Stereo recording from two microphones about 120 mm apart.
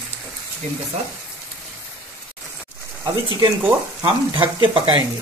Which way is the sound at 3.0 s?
35° right (ahead or behind).